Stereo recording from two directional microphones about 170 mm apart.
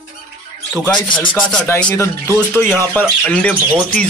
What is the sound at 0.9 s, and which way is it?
Speech, 30° left (ahead or behind).